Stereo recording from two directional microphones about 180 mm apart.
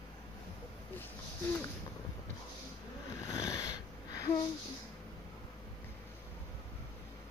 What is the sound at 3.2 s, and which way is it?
Wheeze, 20° left (ahead or behind).